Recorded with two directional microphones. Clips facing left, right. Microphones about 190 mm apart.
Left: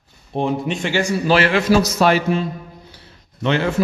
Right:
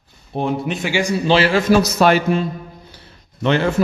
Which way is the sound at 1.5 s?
55° right (ahead or behind).